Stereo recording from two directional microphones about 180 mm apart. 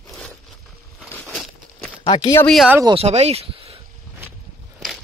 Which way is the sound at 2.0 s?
25° left (ahead or behind).